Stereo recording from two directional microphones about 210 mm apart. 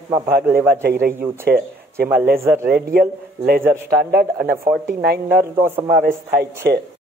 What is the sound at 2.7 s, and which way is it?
A man's voice, 45° right (ahead or behind).